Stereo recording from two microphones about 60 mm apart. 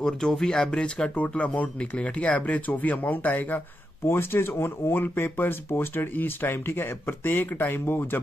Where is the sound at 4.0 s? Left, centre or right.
Left.